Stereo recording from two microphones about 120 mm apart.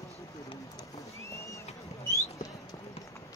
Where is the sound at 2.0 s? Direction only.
25° left (ahead or behind).